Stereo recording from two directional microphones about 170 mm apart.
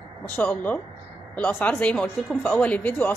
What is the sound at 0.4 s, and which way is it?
Speech, 10° left (ahead or behind).